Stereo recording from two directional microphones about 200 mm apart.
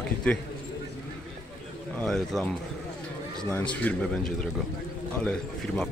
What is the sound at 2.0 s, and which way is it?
Speech, centre (ahead or behind).